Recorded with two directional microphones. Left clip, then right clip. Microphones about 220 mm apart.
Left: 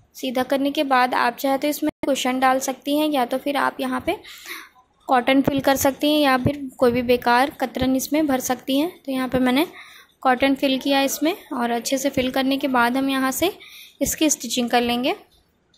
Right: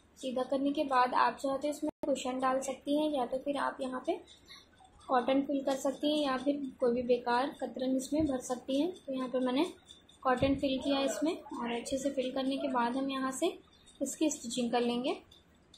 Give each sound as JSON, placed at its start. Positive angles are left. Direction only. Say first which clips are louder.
{"t": 0.2, "sound": "a woman's voice", "louder": "left 11 dB", "side_deg": 40}